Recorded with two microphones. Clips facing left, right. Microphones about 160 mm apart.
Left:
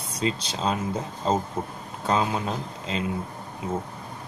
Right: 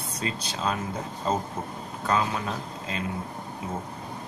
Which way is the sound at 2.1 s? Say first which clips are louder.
Left 2 dB; 25° left (ahead or behind).